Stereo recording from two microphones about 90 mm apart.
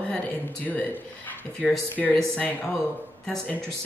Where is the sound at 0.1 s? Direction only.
20° left (ahead or behind).